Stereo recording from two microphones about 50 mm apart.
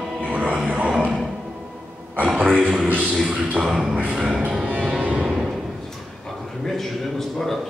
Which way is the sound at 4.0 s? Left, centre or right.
Right.